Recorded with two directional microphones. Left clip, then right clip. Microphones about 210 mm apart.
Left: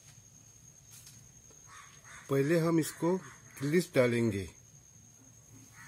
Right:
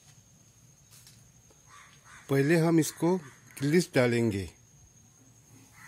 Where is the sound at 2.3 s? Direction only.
45° right (ahead or behind).